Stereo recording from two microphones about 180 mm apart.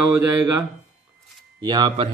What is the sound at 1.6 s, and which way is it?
Speech, 25° right (ahead or behind).